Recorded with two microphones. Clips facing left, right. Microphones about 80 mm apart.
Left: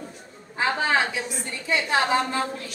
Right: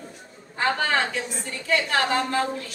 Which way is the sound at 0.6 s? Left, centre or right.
Centre.